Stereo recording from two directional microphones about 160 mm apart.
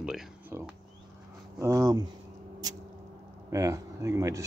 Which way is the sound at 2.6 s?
25° right (ahead or behind).